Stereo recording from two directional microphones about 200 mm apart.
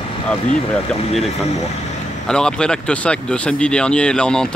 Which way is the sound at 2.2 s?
5° left (ahead or behind).